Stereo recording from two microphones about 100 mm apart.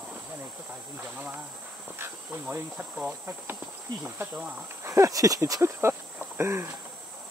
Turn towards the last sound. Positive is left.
turn(degrees=-25)  # may be behind; listen again after turning